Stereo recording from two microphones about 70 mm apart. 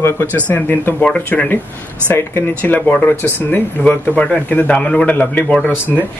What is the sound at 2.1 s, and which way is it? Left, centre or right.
Speech, left.